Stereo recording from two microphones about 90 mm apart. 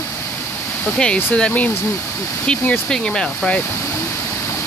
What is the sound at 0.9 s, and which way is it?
Speech, 10° left (ahead or behind).